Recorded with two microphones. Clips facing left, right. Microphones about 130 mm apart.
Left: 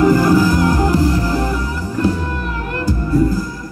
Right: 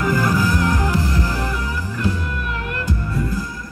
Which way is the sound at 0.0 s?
35° left (ahead or behind).